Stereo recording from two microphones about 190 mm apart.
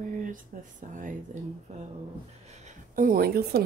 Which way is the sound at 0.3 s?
45° right (ahead or behind).